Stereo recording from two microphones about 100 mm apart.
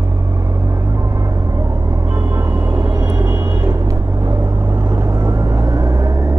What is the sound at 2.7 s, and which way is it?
Vehicle, 30° right (ahead or behind).